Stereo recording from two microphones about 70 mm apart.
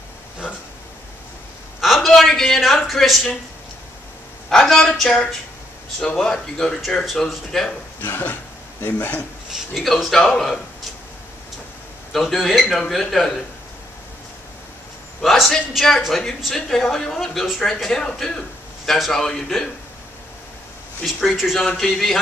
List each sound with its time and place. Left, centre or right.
1.8 s a man's voice: centre
4.5 s speech: centre
8.0 s a man's voice: left
9.5 s speech: centre
12.1 s speech: centre
15.2 s speech: centre
21.4 s speech: centre